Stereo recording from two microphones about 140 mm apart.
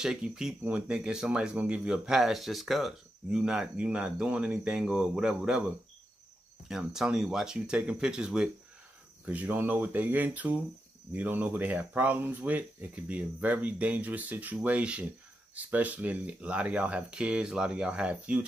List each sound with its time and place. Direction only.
0.0 s speech: 5° right (ahead or behind)
6.7 s speech: 5° right (ahead or behind)